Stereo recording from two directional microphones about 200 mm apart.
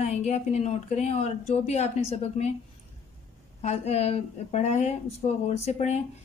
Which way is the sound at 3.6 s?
30° left (ahead or behind).